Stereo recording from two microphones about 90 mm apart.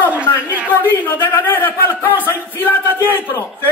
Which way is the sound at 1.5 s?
25° left (ahead or behind).